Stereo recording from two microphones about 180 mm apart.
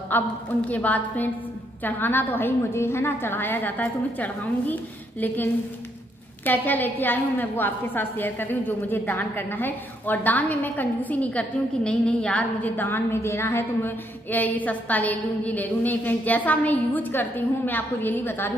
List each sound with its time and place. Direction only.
0.1 s a woman's voice: 10° left (ahead or behind)